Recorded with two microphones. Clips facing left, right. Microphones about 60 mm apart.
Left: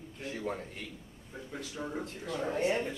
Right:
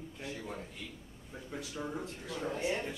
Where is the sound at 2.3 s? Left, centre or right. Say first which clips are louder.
Left 4 dB; left.